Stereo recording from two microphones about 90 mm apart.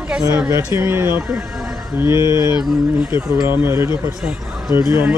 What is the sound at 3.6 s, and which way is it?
Speech, 30° right (ahead or behind).